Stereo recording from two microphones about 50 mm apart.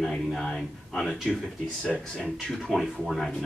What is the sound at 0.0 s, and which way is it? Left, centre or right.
Speech, centre.